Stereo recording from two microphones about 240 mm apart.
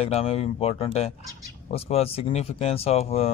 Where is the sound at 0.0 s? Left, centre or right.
Left.